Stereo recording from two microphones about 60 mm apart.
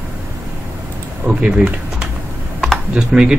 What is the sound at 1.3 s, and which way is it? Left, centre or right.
Speech, centre.